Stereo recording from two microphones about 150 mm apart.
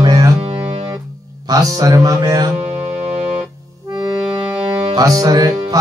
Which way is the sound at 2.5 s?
50° right (ahead or behind).